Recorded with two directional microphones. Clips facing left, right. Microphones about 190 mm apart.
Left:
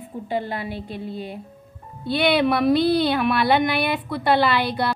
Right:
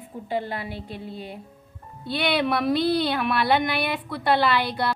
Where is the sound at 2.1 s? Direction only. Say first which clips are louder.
Left 5 dB; 10° left (ahead or behind).